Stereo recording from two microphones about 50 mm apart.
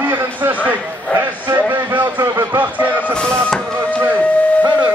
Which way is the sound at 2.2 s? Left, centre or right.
Right.